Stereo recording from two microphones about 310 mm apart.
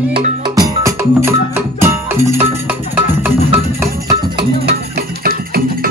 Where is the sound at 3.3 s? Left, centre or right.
Centre.